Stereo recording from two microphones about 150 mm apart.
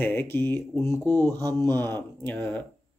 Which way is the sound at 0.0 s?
15° left (ahead or behind).